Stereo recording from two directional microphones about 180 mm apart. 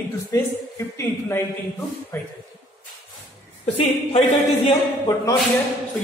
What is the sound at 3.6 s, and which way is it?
Speech, 35° left (ahead or behind).